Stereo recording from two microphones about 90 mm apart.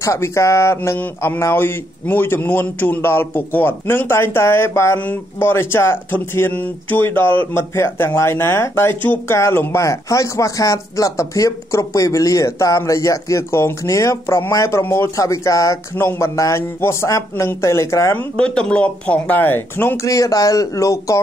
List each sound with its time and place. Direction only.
0.0 s speech: 35° left (ahead or behind)
18.3 s speech: 10° left (ahead or behind)
20.0 s speech: 35° left (ahead or behind)